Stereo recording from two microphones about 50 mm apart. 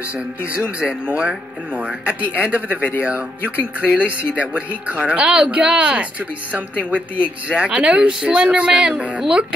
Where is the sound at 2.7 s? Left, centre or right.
Left.